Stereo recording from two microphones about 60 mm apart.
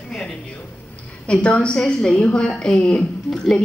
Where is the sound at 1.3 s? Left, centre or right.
Centre.